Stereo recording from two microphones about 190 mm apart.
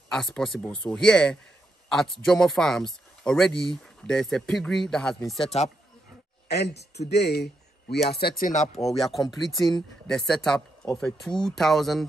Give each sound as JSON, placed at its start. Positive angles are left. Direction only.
{"t": 0.1, "sound": "speech", "side_deg": 0}
{"t": 5.4, "sound": "speech", "side_deg": 35}
{"t": 6.5, "sound": "a man's voice", "side_deg": 60}
{"t": 8.8, "sound": "speech", "side_deg": 0}